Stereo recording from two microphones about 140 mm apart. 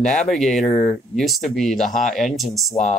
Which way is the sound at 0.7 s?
50° left (ahead or behind).